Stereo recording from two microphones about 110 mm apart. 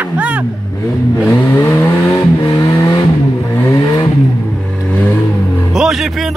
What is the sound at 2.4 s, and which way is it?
Vehicle, 35° left (ahead or behind).